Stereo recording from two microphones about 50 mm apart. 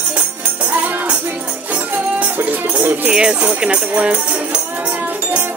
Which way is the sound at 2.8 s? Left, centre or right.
Right.